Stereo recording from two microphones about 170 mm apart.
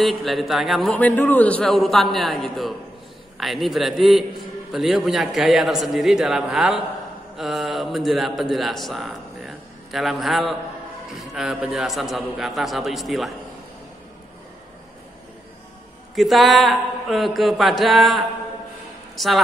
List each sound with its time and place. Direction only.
0.0 s a man's voice: centre (ahead or behind)
16.2 s a man's voice: centre (ahead or behind)